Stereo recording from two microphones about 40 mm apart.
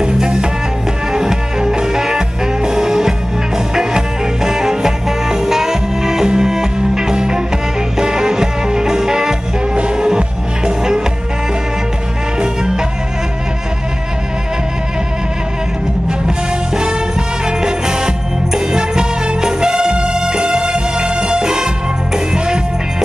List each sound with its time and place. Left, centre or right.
0.0 s music: right
16.3 s music: centre